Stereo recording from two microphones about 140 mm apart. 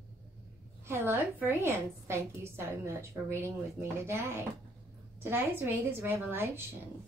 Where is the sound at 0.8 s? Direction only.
15° right (ahead or behind).